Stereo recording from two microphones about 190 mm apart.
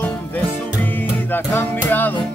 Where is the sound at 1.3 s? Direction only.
10° left (ahead or behind).